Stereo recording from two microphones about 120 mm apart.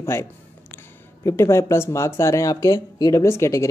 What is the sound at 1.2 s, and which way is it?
Speech, 25° left (ahead or behind).